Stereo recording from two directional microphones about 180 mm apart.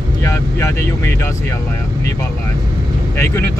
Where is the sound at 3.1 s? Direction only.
15° left (ahead or behind).